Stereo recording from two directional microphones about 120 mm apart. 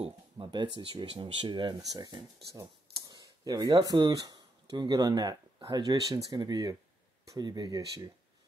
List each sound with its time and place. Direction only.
0.0 s speech: 40° right (ahead or behind)